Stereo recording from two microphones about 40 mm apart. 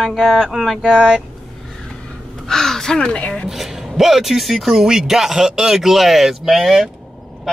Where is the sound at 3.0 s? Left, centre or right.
Left.